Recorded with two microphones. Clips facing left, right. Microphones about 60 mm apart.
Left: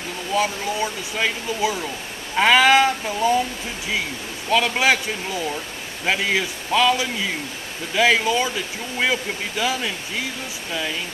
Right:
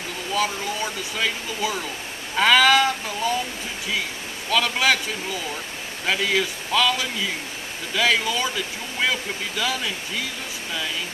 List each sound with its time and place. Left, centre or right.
0.3 s speech: centre
4.5 s a man's voice: centre